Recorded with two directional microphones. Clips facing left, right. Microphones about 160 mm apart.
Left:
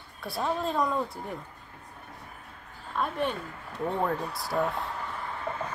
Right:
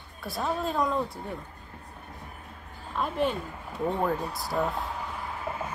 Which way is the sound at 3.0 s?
5° right (ahead or behind).